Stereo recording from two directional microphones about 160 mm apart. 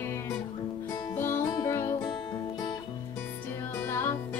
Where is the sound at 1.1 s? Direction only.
15° left (ahead or behind).